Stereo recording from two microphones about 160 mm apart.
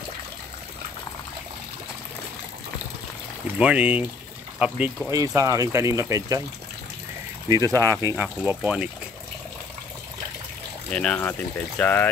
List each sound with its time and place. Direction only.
3.5 s speech: 10° right (ahead or behind)
5.1 s speech: 20° right (ahead or behind)
7.4 s speech: 25° right (ahead or behind); by 8.9 s 5° right (ahead or behind)
10.9 s speech: 5° left (ahead or behind)